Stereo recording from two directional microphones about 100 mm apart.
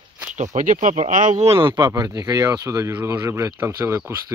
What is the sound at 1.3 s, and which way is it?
Speech, 90° right.